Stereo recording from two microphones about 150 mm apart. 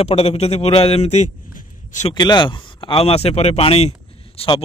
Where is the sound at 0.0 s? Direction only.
45° left (ahead or behind).